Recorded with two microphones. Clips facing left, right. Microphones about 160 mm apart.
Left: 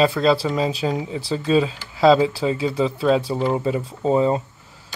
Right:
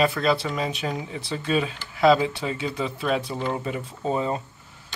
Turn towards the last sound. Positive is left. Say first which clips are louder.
# left 7 dB
turn(degrees=25)  # may be behind; listen again after turning